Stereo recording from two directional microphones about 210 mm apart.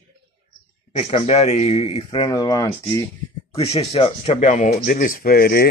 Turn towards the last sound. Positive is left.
turn(degrees=45)  # may be behind; listen again after turning